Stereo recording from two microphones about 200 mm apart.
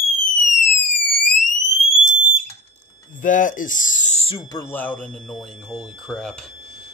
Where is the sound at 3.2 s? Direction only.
40° left (ahead or behind).